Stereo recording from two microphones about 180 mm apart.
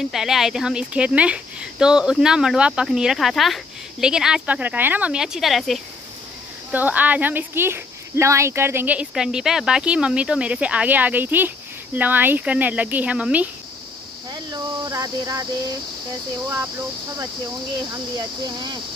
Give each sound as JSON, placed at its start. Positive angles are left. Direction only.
{"t": 0.0, "sound": "speech", "side_deg": 0}
{"t": 14.3, "sound": "speech", "side_deg": -25}
{"t": 17.9, "sound": "speech", "side_deg": -25}